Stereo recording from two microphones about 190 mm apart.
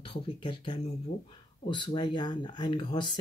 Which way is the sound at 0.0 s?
25° left (ahead or behind).